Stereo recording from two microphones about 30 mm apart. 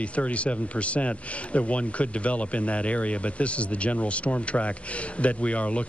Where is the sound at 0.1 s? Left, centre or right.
Left.